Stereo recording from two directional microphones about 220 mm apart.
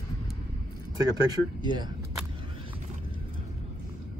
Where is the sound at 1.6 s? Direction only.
20° right (ahead or behind).